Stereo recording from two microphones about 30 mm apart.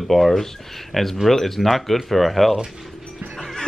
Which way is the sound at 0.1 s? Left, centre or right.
Centre.